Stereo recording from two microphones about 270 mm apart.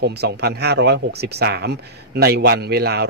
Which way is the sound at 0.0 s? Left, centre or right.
Right.